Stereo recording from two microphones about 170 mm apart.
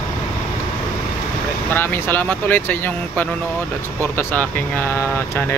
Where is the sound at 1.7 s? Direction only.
10° left (ahead or behind).